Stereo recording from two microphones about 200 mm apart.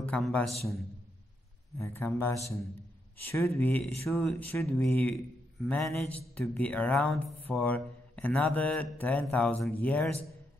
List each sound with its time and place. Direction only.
0.0 s a man's voice: 5° left (ahead or behind)
1.8 s a man's voice: 10° left (ahead or behind)